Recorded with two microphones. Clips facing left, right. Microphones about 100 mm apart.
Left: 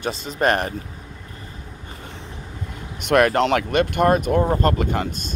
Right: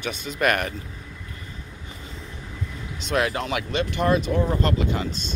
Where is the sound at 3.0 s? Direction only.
60° left (ahead or behind).